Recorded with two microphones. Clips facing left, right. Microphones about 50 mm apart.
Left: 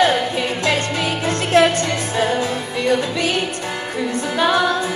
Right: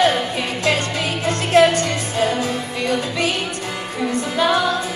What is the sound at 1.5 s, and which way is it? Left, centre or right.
Music, left.